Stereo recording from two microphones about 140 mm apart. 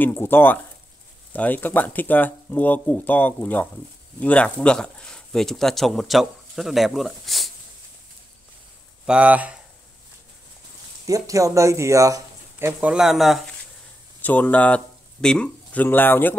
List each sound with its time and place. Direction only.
0.0 s speech: 15° left (ahead or behind); by 7.5 s centre (ahead or behind)
9.0 s speech: 10° right (ahead or behind)
11.1 s speech: 25° right (ahead or behind)
12.9 s speech: 5° right (ahead or behind)
14.2 s speech: 10° left (ahead or behind)